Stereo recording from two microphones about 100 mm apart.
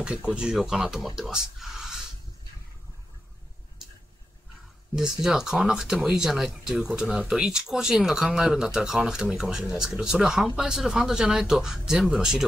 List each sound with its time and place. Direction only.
0.0 s speech: 10° right (ahead or behind)
4.9 s speech: 5° right (ahead or behind)